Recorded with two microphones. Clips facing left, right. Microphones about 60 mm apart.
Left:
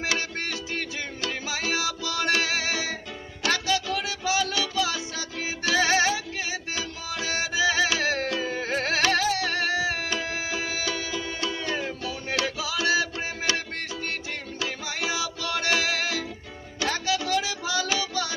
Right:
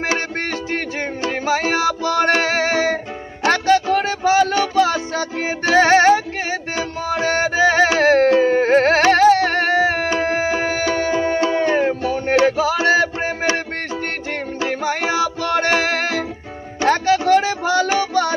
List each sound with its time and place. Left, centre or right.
0.1 s music: right
14.6 s music: right